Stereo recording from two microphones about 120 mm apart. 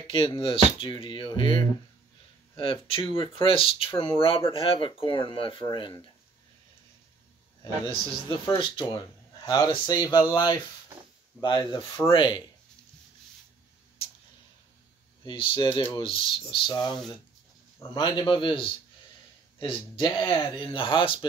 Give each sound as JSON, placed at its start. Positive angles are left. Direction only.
{"t": 0.0, "sound": "speech", "side_deg": 45}
{"t": 7.6, "sound": "speech", "side_deg": 45}
{"t": 15.2, "sound": "speech", "side_deg": 45}
{"t": 17.9, "sound": "speech", "side_deg": 40}